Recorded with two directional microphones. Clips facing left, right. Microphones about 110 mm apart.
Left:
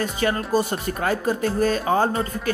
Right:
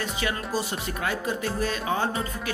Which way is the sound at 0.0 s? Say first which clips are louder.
Left 6 dB; 45° left (ahead or behind).